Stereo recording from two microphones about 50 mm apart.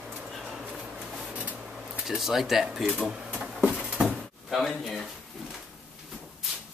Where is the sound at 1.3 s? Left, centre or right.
Right.